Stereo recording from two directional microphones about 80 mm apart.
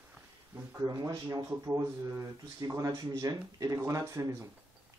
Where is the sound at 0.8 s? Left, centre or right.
Right.